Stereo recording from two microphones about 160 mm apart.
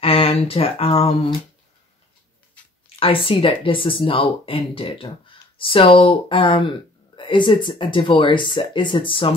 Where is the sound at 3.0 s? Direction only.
35° left (ahead or behind).